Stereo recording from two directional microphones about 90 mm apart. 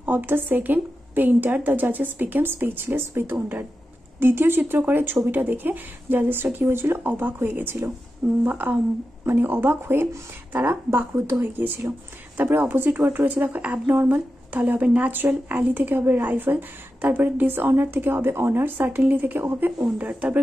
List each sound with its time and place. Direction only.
0.0 s speech: 20° right (ahead or behind)